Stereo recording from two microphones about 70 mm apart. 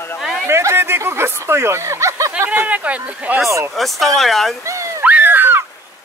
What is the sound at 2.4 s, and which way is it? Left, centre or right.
Speech, right.